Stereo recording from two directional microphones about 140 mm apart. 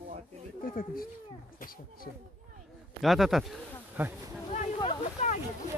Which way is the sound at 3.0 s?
Centre (ahead or behind).